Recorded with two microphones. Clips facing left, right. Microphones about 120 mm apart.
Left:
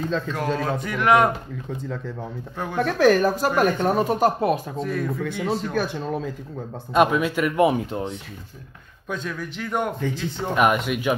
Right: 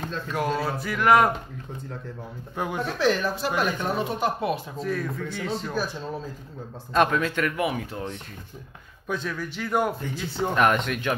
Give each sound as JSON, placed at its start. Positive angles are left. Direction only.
{"t": 0.3, "sound": "speech", "side_deg": -5}
{"t": 2.5, "sound": "speech", "side_deg": -10}
{"t": 2.8, "sound": "speech", "side_deg": 55}
{"t": 4.7, "sound": "speech", "side_deg": 0}
{"t": 5.8, "sound": "speech", "side_deg": 65}
{"t": 6.9, "sound": "speech", "side_deg": 10}
{"t": 7.5, "sound": "speech", "side_deg": 25}
{"t": 9.0, "sound": "speech", "side_deg": 0}
{"t": 10.5, "sound": "speech", "side_deg": 10}